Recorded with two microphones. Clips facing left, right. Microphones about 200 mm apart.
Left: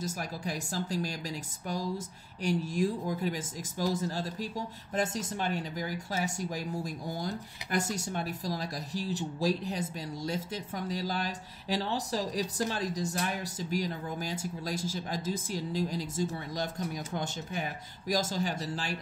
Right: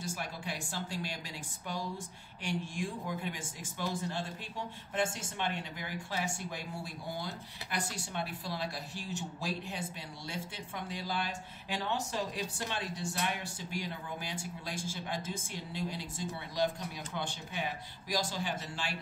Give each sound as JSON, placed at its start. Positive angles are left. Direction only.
{"t": 0.0, "sound": "speech", "side_deg": 40}
{"t": 2.4, "sound": "speech", "side_deg": 40}